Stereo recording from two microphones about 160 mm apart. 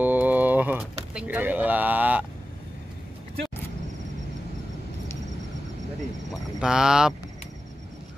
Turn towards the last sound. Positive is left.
turn(degrees=-5)  # may be behind; listen again after turning